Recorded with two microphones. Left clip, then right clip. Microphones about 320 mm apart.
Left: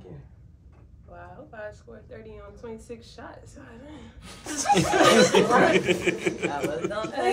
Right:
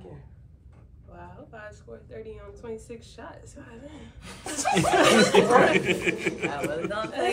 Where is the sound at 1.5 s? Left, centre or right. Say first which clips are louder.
Left 4 dB; centre.